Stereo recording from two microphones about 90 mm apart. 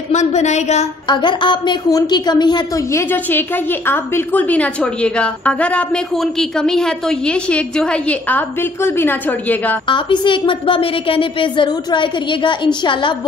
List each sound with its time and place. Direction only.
1.0 s a woman's voice: 60° left (ahead or behind)
1.9 s a woman's voice: 45° left (ahead or behind)
2.9 s a woman's voice: 25° left (ahead or behind)
9.8 s a woman's voice: 65° left (ahead or behind)